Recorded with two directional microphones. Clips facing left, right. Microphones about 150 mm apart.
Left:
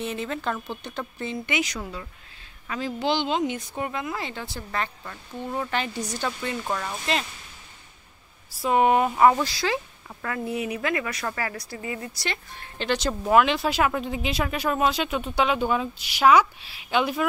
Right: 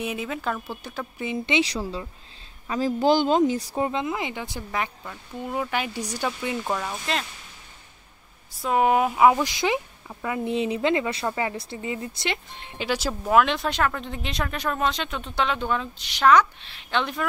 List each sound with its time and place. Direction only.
0.0 s speech: 10° right (ahead or behind); by 2.0 s 30° right (ahead or behind)
2.7 s speech: 40° right (ahead or behind); by 7.2 s centre (ahead or behind)
8.5 s speech: 5° left (ahead or behind); by 12.7 s 20° right (ahead or behind)
12.7 s speech: 5° right (ahead or behind); by 17.3 s 10° left (ahead or behind)